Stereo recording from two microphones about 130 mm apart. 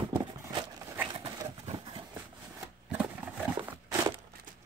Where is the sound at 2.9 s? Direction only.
10° right (ahead or behind).